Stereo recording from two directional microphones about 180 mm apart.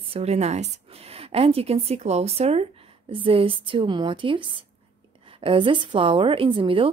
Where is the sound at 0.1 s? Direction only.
35° right (ahead or behind).